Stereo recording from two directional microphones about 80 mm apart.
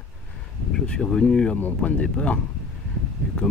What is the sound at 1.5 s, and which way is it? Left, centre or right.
Speech, left.